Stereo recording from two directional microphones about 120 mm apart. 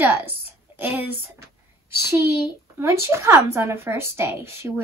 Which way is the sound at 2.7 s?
20° right (ahead or behind).